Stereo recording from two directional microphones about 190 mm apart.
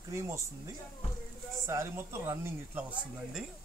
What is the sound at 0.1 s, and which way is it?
Speech, 15° right (ahead or behind).